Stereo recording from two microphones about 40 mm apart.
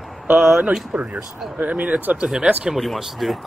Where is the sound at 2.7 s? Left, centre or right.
Centre.